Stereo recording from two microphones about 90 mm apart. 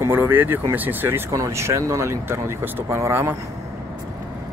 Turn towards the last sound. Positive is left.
turn(degrees=-30)  # may be behind; listen again after turning